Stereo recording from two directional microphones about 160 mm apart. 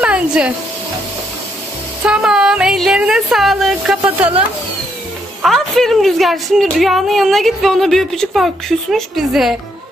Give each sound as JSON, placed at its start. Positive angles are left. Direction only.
{"t": 0.0, "sound": "a sound", "side_deg": -5}
{"t": 2.0, "sound": "a woman's voice", "side_deg": -5}
{"t": 5.4, "sound": "a woman's voice", "side_deg": 0}